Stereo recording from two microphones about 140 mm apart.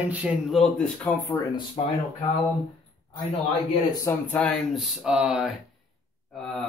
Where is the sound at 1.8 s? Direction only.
35° left (ahead or behind).